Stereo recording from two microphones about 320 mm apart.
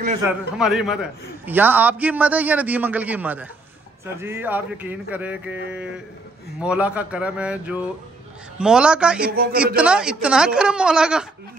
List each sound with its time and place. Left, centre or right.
0.3 s a man's voice: centre
9.3 s a man's voice: right
9.8 s a man's voice: centre